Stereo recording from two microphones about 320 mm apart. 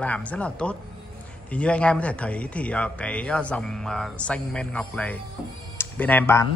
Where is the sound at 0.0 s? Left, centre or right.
Centre.